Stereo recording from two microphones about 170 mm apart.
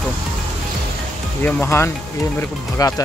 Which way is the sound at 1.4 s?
15° left (ahead or behind).